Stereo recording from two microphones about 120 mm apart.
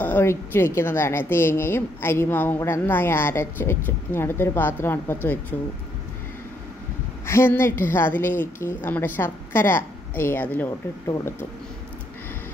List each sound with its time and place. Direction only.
0.0 s a woman's voice: 20° left (ahead or behind)
7.2 s a woman's voice: 20° left (ahead or behind)